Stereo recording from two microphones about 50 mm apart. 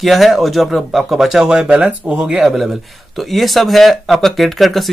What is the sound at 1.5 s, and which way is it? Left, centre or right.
Speech, centre.